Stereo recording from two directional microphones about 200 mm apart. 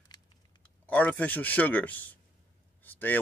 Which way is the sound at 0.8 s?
5° left (ahead or behind).